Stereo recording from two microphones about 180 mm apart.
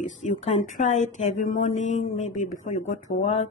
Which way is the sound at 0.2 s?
40° left (ahead or behind).